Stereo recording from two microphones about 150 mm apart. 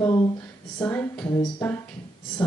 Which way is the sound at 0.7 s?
15° left (ahead or behind).